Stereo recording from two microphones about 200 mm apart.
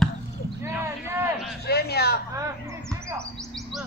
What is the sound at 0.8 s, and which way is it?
Speech, 10° right (ahead or behind).